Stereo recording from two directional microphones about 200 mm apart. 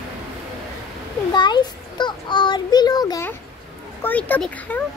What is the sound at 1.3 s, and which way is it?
Child singing, 20° left (ahead or behind).